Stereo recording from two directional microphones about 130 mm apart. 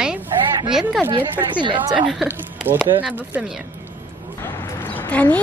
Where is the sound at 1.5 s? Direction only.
35° right (ahead or behind).